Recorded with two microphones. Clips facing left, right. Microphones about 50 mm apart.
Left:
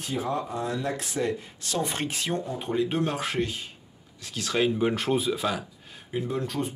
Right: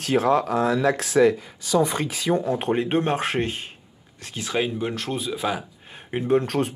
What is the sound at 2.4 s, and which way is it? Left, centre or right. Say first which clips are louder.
Speech: right 9 dB; right.